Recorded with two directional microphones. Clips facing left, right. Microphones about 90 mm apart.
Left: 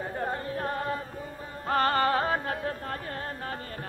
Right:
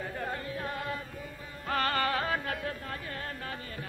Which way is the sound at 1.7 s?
35° left (ahead or behind).